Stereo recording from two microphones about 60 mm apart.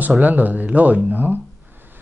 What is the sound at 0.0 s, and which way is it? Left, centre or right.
Speech, right.